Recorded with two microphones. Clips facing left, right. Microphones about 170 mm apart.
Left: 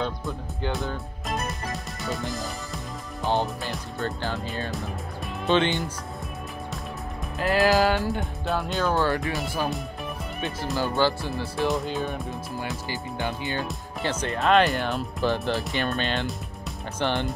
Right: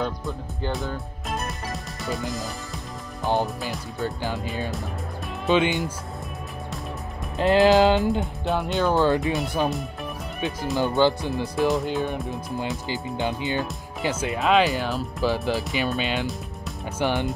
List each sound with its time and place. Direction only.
0.0 s music: centre (ahead or behind)
3.3 s speech: centre (ahead or behind)
5.5 s speech: 5° right (ahead or behind)
7.3 s speech: 20° right (ahead or behind)
11.0 s speech: 20° right (ahead or behind)
11.5 s speech: centre (ahead or behind)
11.8 s speech: 15° right (ahead or behind)